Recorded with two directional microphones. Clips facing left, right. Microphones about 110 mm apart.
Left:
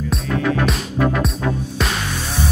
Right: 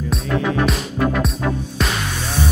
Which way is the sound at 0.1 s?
Centre (ahead or behind).